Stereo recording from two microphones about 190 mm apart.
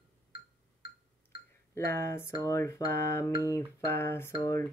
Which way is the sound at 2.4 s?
15° left (ahead or behind).